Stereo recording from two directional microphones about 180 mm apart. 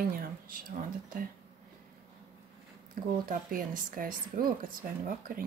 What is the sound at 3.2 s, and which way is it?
Speech, 50° right (ahead or behind).